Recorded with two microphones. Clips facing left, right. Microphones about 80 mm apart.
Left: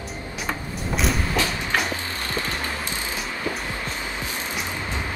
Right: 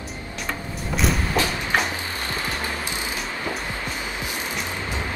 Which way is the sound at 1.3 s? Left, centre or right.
Right.